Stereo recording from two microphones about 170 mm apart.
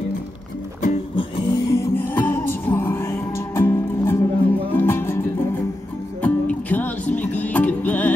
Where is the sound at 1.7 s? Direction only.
15° left (ahead or behind).